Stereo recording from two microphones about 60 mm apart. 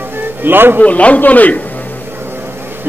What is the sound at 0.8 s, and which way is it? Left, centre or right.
Speech, left.